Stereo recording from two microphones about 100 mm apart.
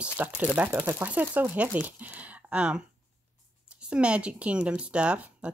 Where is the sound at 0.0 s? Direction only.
15° right (ahead or behind).